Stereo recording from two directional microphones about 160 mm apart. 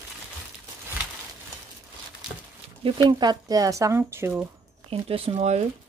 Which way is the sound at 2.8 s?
30° right (ahead or behind).